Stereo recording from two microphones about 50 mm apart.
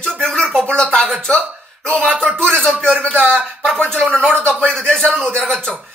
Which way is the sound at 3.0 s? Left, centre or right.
Left.